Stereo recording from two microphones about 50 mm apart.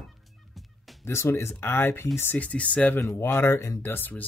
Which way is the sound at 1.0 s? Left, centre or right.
Left.